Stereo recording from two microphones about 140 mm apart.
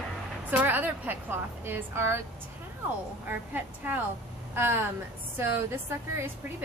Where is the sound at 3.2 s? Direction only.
10° right (ahead or behind).